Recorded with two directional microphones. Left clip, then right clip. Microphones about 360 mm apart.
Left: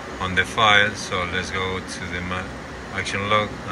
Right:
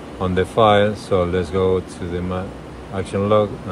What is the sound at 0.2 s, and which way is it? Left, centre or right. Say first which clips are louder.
Speech: right 3 dB; centre.